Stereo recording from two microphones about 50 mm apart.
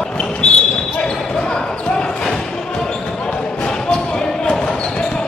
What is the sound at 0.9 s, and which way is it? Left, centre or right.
Basketball bounce, centre.